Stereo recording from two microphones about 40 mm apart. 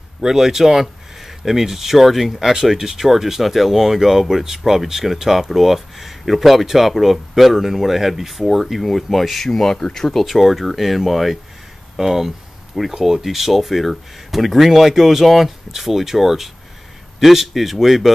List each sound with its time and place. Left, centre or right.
0.2 s speech: centre
2.5 s speech: centre
9.5 s speech: centre